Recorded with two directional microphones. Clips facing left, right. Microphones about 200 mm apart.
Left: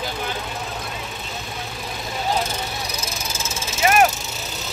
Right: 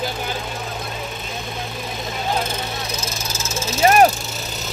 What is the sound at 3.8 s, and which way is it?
Vehicle, 30° right (ahead or behind).